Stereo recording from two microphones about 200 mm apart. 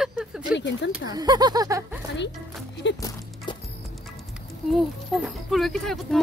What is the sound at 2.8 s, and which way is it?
Speech, 60° left (ahead or behind).